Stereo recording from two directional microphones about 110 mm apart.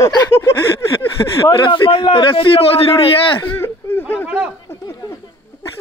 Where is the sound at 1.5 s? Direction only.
50° left (ahead or behind).